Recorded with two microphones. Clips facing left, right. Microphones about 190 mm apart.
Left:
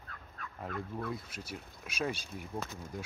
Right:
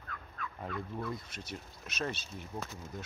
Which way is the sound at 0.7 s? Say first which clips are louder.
Left 1 dB; 55° left (ahead or behind).